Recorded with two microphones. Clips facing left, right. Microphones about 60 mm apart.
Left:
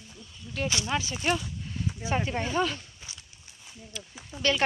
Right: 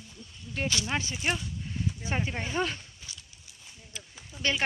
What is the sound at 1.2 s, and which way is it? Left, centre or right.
Speech, centre.